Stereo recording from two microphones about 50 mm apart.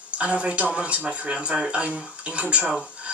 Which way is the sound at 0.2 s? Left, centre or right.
Right.